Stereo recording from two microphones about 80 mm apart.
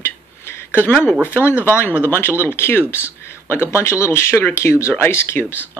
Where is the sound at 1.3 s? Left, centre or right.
Left.